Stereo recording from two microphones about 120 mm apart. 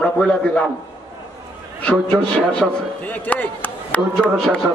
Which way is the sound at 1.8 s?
10° left (ahead or behind).